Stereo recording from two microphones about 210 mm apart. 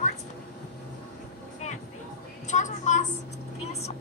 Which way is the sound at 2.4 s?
35° left (ahead or behind).